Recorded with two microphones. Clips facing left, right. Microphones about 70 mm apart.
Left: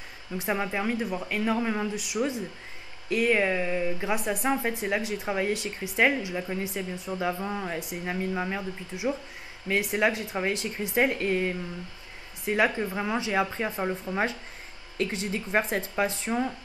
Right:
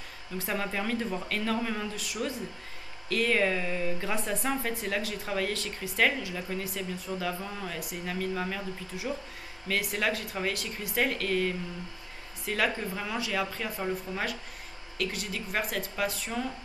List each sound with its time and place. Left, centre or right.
0.4 s speech: centre